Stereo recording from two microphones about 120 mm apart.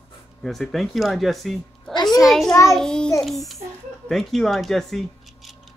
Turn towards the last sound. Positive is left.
turn(degrees=0)  # may be behind; listen again after turning